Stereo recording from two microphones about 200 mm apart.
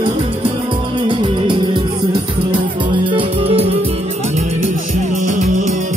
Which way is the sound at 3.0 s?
25° right (ahead or behind).